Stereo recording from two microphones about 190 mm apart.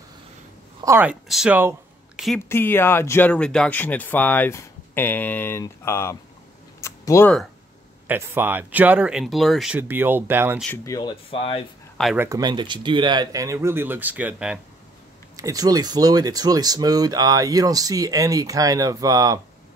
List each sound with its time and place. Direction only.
0.7 s speech: 15° right (ahead or behind)
2.2 s speech: 10° left (ahead or behind)
6.8 s a sound: 15° left (ahead or behind)
8.1 s speech: 10° right (ahead or behind)
10.9 s speech: 25° left (ahead or behind)
12.2 s speech: 20° right (ahead or behind)
15.3 s speech: 20° right (ahead or behind)